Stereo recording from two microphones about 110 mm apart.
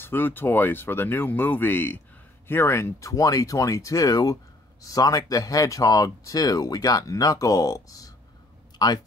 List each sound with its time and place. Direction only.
0.0 s speech: 20° left (ahead or behind); by 9.0 s 40° left (ahead or behind)